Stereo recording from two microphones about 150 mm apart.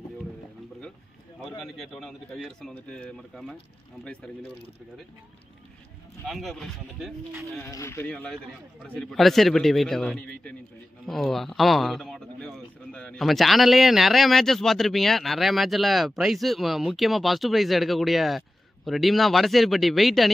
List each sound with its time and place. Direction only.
1.6 s a man's voice: centre (ahead or behind)
6.2 s a man's voice: centre (ahead or behind)
7.6 s speech: 20° left (ahead or behind)
8.1 s a man's voice: 5° left (ahead or behind)